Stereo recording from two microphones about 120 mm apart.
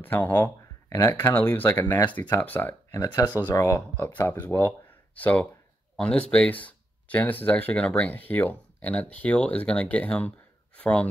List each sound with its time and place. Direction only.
0.0 s speech: 15° left (ahead or behind)
2.9 s speech: 30° left (ahead or behind); by 11.1 s 10° left (ahead or behind)